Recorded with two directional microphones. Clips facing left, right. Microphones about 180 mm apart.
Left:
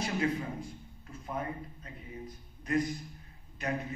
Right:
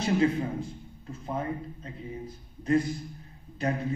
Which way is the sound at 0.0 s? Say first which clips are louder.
Right 7 dB; 25° right (ahead or behind).